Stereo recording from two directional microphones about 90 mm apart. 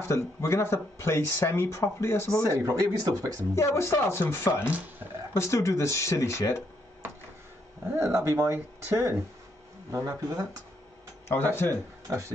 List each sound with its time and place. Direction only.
0.0 s speech: 30° left (ahead or behind)
2.4 s speech: 35° right (ahead or behind)
3.5 s speech: 30° left (ahead or behind)
8.0 s speech: 30° right (ahead or behind)
11.2 s speech: 25° left (ahead or behind)
12.1 s speech: 40° right (ahead or behind)